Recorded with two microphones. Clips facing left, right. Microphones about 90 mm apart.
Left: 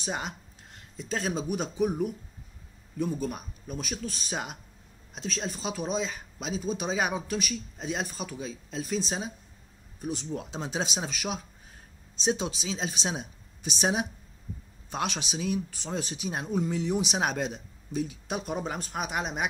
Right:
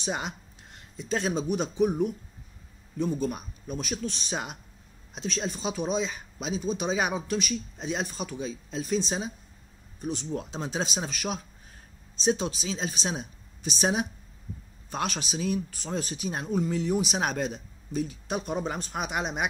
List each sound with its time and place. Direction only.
0.9 s speech: centre (ahead or behind)
3.0 s speech: 5° left (ahead or behind)